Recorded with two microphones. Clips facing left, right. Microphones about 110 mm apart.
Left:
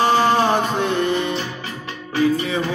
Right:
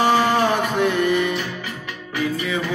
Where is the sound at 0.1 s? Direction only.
30° left (ahead or behind).